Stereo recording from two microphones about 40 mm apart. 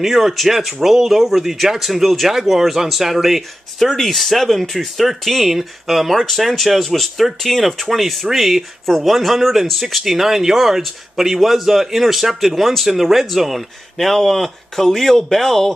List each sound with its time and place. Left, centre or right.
0.0 s speech: centre
3.8 s speech: centre